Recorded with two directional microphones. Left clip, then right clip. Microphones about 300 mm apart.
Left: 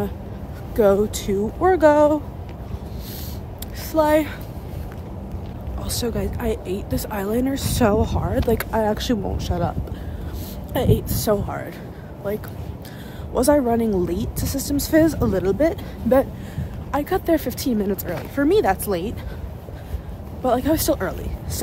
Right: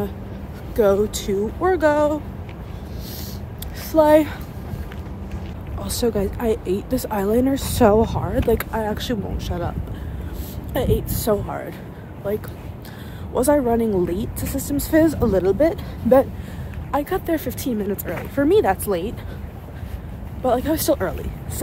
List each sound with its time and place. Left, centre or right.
0.7 s speech: centre
3.9 s speech: centre
5.8 s a woman's voice: centre
13.3 s speech: centre
20.4 s speech: centre